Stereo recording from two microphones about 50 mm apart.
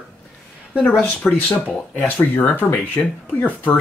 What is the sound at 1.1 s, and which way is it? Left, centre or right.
Speech, left.